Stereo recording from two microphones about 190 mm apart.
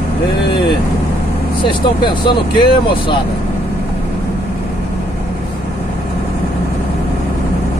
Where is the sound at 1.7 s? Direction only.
25° left (ahead or behind).